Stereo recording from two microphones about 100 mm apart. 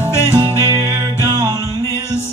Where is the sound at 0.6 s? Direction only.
30° right (ahead or behind).